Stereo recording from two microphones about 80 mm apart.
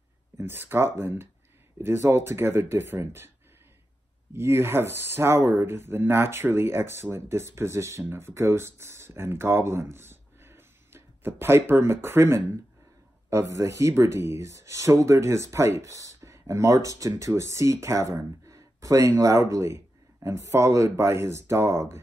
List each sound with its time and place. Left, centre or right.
0.4 s speech: right
4.3 s speech: right